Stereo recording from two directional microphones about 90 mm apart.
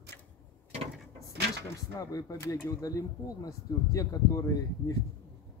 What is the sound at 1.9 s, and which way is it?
Speech, 40° left (ahead or behind).